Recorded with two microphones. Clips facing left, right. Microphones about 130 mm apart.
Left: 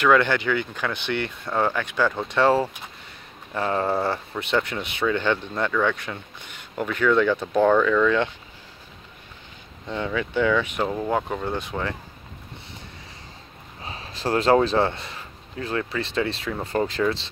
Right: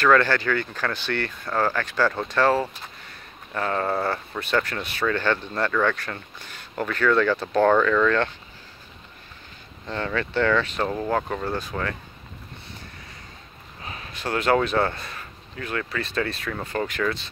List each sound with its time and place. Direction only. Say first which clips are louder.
0.0 s speech: even; 15° left (ahead or behind)
9.8 s speech: left 1 dB; 10° left (ahead or behind)
13.8 s speech: left 4 dB; 30° left (ahead or behind)